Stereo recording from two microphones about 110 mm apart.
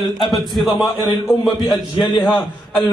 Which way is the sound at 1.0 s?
40° left (ahead or behind).